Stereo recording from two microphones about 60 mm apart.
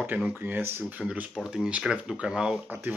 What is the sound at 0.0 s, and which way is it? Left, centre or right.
Speech, right.